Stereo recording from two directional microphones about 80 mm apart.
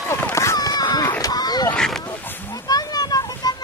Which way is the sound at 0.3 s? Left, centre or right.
Left.